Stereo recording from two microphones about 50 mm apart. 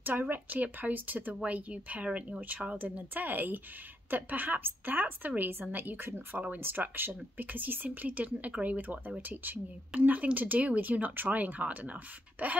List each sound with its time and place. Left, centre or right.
0.0 s speech: right